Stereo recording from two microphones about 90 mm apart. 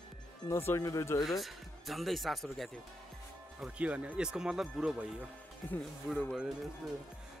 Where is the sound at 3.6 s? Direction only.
15° right (ahead or behind).